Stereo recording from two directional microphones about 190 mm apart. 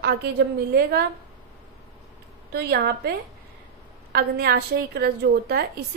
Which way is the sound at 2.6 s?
55° right (ahead or behind).